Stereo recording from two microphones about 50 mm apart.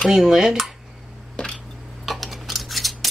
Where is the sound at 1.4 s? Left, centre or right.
Centre.